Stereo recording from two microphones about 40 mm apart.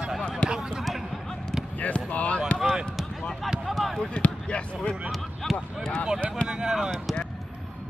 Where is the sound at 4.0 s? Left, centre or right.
Left.